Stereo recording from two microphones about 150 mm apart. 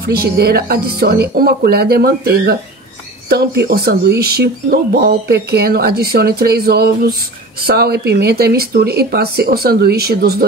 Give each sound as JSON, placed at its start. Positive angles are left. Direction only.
{"t": 0.1, "sound": "speech", "side_deg": -90}